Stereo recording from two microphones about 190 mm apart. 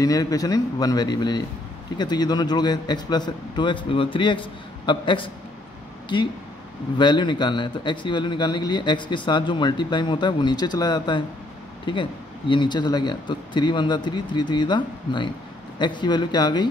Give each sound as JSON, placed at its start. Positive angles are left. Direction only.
{"t": 0.0, "sound": "a man's voice", "side_deg": 20}